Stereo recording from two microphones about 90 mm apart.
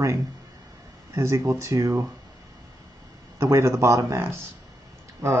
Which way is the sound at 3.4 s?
30° right (ahead or behind).